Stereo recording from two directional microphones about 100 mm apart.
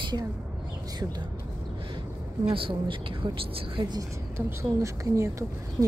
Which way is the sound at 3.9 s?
30° right (ahead or behind).